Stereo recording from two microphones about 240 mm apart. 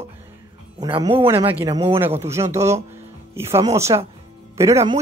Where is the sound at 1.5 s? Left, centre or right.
Centre.